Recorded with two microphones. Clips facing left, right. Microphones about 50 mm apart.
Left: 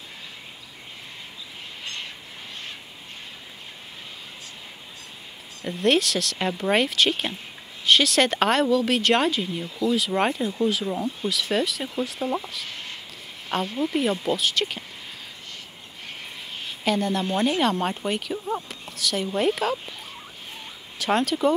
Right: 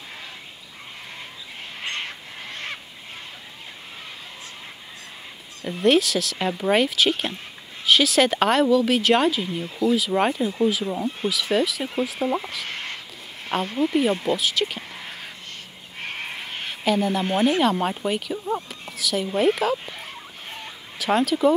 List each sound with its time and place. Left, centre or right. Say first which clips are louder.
1.8 s bird: right 6 dB; right
5.6 s speech: right 3 dB; centre
12.4 s speech: right 4 dB; right
13.5 s speech: right 3 dB; centre
16.0 s a sound: right 7 dB; right
16.8 s speech: right 2 dB; centre
21.0 s speech: right 2 dB; centre